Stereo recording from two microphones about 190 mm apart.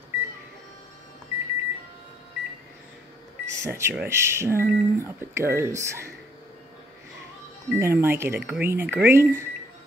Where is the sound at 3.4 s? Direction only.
15° right (ahead or behind).